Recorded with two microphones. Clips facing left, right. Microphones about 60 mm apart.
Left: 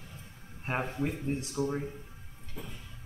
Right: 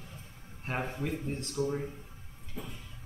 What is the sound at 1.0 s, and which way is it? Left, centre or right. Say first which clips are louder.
Speech: left 2 dB; centre.